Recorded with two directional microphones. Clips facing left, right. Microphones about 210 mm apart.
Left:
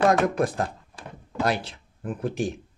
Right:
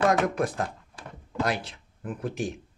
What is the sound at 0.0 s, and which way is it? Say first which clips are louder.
Speech: left 3 dB; 35° left (ahead or behind).